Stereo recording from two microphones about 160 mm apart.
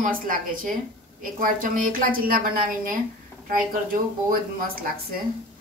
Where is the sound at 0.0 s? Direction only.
55° right (ahead or behind).